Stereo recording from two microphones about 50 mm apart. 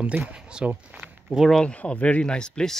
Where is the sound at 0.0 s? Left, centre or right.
Right.